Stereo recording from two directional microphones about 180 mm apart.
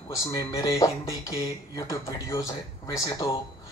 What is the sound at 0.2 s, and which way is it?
Speech, 15° left (ahead or behind).